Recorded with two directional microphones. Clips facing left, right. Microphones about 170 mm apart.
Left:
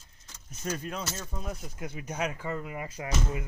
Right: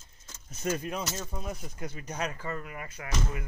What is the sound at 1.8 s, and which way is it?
Speech, 10° left (ahead or behind).